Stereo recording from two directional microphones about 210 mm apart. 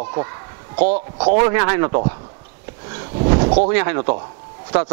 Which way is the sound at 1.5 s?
20° right (ahead or behind).